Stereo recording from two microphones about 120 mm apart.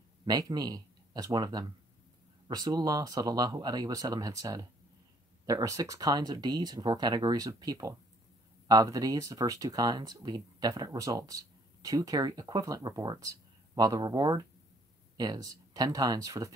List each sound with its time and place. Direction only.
0.2 s speech: 35° right (ahead or behind)